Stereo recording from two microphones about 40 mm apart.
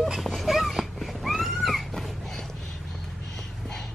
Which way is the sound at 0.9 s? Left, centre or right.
Centre.